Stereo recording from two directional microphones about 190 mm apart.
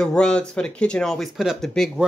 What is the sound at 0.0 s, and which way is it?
Speech, 5° left (ahead or behind).